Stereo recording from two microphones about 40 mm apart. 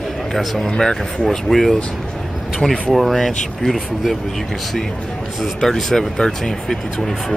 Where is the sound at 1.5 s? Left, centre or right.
Centre.